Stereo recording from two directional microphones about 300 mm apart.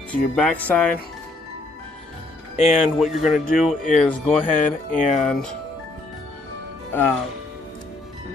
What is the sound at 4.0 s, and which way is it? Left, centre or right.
Speech, centre.